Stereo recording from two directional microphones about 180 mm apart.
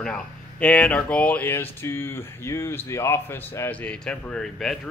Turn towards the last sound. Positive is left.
turn(degrees=0)  # may be behind; listen again after turning